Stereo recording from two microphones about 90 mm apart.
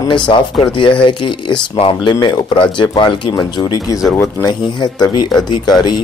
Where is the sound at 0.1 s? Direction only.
65° left (ahead or behind).